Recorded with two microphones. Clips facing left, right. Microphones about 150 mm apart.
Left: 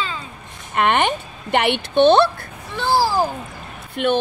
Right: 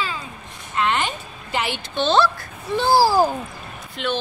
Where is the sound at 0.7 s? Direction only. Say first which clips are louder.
Left 4 dB; 65° left (ahead or behind).